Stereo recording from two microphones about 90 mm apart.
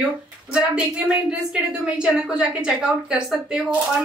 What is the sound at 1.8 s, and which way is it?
A woman's voice, 10° right (ahead or behind).